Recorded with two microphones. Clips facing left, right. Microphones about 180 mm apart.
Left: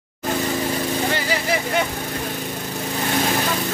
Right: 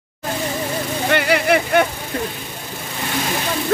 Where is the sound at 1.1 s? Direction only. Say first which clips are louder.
Right 6 dB; 65° right (ahead or behind).